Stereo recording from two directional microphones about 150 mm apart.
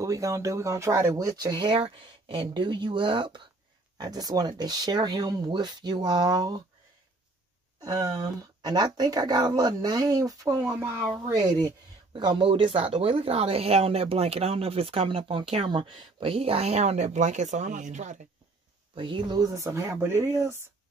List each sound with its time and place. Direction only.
0.0 s speech: 20° right (ahead or behind)
7.8 s speech: 25° right (ahead or behind); by 18.2 s 55° right (ahead or behind)
18.9 s speech: 35° right (ahead or behind)